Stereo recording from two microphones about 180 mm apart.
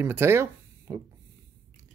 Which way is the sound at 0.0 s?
15° right (ahead or behind).